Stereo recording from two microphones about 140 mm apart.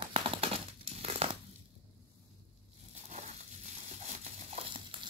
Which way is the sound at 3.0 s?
55° right (ahead or behind).